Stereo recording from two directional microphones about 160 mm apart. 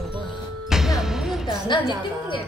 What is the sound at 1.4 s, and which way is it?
Speech, 30° left (ahead or behind).